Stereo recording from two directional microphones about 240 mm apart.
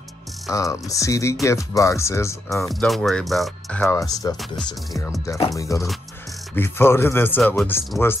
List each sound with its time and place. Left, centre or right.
0.5 s speech: centre
2.6 s speech: centre
3.8 s speech: centre